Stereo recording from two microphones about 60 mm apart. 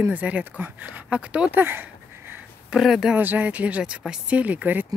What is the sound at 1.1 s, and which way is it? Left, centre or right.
Speech, centre.